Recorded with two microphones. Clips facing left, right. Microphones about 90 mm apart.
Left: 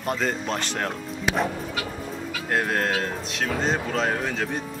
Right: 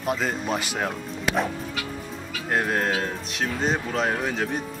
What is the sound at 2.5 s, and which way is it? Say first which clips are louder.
Speech: even; 5° right (ahead or behind).